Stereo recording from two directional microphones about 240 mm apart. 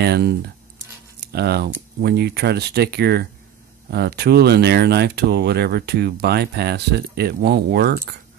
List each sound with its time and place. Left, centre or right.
0.0 s speech: right